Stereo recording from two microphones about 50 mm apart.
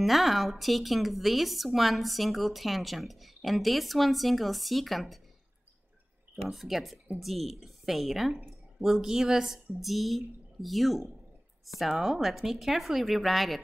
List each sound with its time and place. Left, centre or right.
0.0 s a woman's voice: centre
6.3 s a woman's voice: centre